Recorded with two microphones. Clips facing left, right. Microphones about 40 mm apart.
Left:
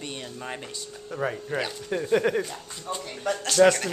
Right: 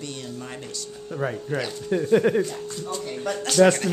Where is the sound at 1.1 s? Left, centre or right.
Centre.